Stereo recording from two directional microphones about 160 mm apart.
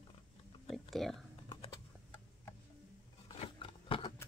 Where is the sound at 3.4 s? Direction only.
35° left (ahead or behind).